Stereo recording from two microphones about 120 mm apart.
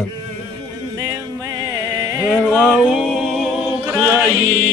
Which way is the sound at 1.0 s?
30° right (ahead or behind).